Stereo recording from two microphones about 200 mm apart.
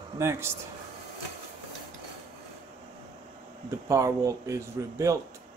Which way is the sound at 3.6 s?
15° right (ahead or behind).